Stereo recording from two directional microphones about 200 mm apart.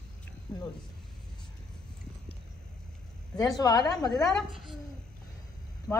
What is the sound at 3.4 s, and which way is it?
Speech, 20° left (ahead or behind).